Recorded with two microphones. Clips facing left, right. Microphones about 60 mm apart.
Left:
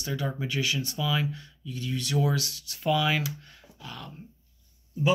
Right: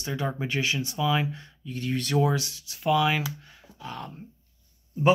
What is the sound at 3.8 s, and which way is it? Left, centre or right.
Speech, right.